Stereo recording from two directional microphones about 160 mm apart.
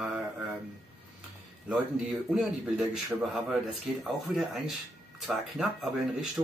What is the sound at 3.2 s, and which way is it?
Speech, centre (ahead or behind).